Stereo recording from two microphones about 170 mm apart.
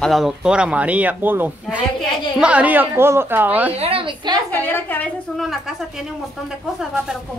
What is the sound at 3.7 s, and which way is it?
Speech, 35° right (ahead or behind).